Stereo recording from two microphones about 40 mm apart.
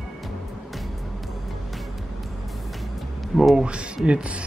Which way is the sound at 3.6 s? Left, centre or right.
Right.